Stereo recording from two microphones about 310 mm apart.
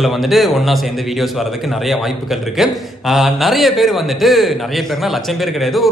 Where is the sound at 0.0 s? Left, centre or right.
Centre.